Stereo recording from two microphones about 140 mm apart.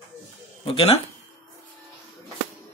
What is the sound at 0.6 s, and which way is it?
Speech, 40° left (ahead or behind).